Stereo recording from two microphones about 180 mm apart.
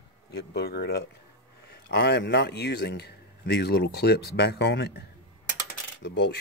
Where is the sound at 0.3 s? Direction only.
65° left (ahead or behind).